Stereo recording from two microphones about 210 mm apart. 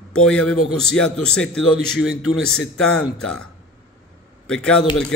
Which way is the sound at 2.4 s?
85° left.